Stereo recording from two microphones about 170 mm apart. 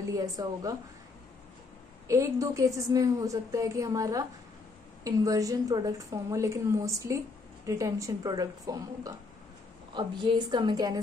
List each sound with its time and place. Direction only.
0.0 s a woman's voice: 20° right (ahead or behind)
2.0 s a woman's voice: 20° right (ahead or behind)